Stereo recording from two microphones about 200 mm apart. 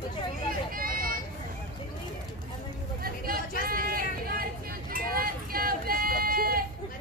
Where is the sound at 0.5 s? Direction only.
45° right (ahead or behind).